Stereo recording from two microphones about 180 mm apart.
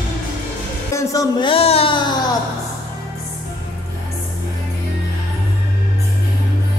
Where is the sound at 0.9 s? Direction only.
15° left (ahead or behind).